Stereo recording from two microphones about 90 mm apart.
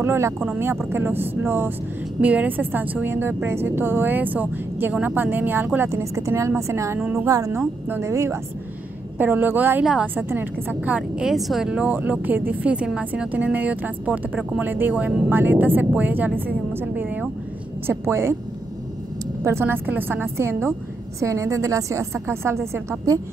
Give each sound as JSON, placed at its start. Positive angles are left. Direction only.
{"t": 0.0, "sound": "a woman's voice", "side_deg": -25}
{"t": 9.2, "sound": "a woman's voice", "side_deg": -20}
{"t": 11.0, "sound": "speech", "side_deg": -5}
{"t": 11.9, "sound": "a woman's voice", "side_deg": -20}
{"t": 17.8, "sound": "a woman's voice", "side_deg": -30}
{"t": 19.4, "sound": "a woman's voice", "side_deg": -25}